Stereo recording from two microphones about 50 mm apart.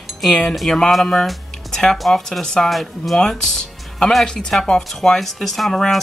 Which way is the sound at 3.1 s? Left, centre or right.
Centre.